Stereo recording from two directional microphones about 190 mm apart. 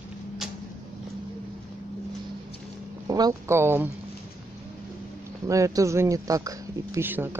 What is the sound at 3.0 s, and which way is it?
Speech, 20° right (ahead or behind).